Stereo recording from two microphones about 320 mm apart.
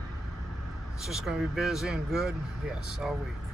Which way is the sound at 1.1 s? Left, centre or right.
Centre.